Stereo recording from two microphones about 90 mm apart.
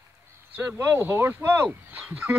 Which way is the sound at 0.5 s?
20° right (ahead or behind).